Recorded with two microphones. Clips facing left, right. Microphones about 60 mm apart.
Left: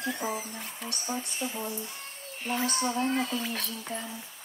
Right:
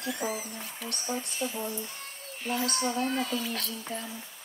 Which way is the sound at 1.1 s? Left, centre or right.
Centre.